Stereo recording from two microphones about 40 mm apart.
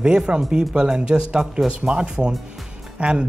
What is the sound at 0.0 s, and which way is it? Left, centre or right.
Speech, right.